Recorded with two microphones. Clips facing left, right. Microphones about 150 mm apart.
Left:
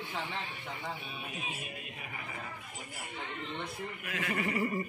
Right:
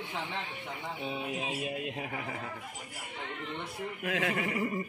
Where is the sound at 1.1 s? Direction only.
90° right.